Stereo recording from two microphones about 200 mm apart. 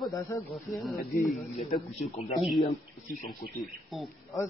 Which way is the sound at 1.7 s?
40° left (ahead or behind).